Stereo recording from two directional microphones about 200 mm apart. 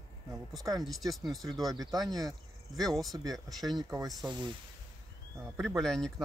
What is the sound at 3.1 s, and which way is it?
Speech, 20° right (ahead or behind).